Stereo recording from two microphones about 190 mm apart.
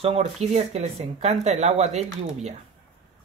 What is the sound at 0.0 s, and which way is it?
Speech, 30° right (ahead or behind).